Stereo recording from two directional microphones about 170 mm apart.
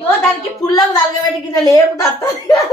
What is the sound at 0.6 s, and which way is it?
Speech, 25° left (ahead or behind).